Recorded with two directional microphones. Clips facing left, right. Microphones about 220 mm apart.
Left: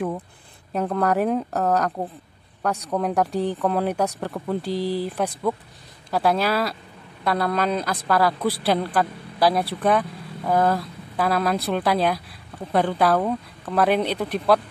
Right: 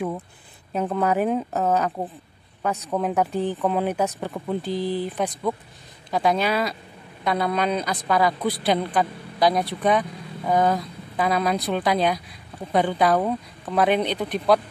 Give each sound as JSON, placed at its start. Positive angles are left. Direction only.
{"t": 0.7, "sound": "speech", "side_deg": 0}
{"t": 4.6, "sound": "speech", "side_deg": 35}
{"t": 5.0, "sound": "speech", "side_deg": 0}